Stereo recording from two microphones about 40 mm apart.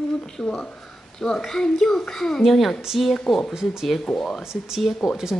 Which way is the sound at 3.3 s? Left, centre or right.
Centre.